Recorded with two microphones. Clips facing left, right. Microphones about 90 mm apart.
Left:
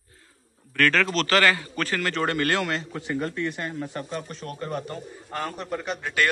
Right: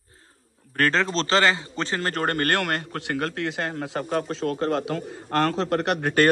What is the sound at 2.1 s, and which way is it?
A man's voice, 45° right (ahead or behind).